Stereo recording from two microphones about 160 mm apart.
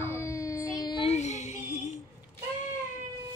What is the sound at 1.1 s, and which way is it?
Child singing, 45° left (ahead or behind).